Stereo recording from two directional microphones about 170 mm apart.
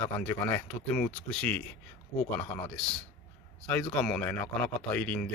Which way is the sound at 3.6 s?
5° left (ahead or behind).